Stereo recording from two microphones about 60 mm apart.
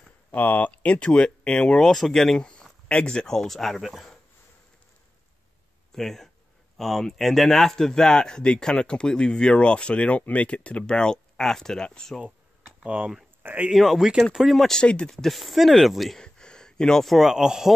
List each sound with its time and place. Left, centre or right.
0.3 s speech: left; by 4.2 s centre
5.9 s a sound: centre
6.8 s speech: centre
12.8 s speech: right
13.4 s a sound: right
13.7 s speech: centre
14.8 s speech: centre
15.2 s speech: centre
16.2 s a sound: centre
17.3 s speech: centre